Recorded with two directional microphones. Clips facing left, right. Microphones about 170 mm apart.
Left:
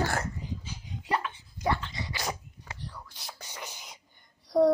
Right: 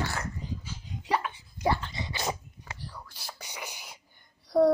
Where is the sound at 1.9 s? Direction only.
25° right (ahead or behind).